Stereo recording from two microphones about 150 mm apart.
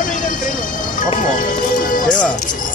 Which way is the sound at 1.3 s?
65° left (ahead or behind).